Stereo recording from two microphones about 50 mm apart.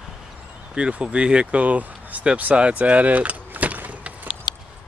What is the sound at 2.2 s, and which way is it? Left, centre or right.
Vehicle, right.